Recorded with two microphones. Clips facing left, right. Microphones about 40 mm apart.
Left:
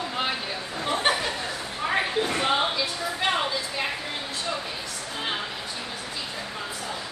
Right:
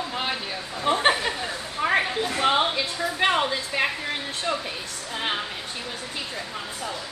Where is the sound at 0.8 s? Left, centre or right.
Right.